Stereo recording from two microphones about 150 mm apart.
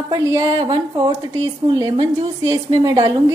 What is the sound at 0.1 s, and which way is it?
A woman's voice, 25° right (ahead or behind).